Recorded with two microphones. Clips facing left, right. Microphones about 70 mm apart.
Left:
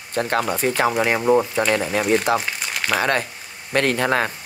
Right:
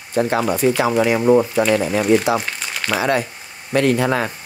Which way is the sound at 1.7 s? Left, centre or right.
Right.